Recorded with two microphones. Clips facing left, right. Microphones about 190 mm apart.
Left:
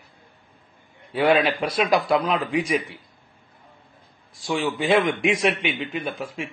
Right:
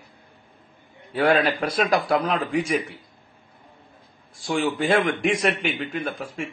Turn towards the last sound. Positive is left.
turn(degrees=0)  # may be behind; listen again after turning